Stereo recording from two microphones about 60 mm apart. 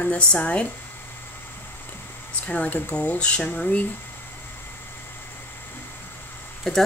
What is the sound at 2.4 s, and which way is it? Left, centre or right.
Speech, left.